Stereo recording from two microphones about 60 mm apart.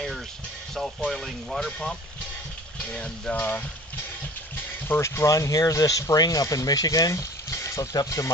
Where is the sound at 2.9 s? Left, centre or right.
Centre.